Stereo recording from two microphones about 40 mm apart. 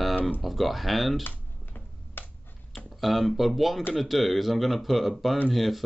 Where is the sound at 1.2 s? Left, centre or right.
Left.